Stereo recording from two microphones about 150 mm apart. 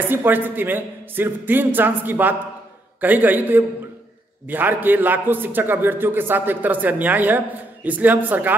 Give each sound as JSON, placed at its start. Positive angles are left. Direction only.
{"t": 0.1, "sound": "a man's voice", "side_deg": -15}